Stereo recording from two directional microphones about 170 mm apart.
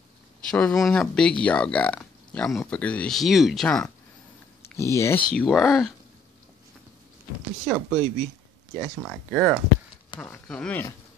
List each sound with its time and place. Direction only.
0.5 s speech: 5° left (ahead or behind)
4.7 s speech: 15° left (ahead or behind)
5.4 s speech: centre (ahead or behind)
7.6 s speech: centre (ahead or behind)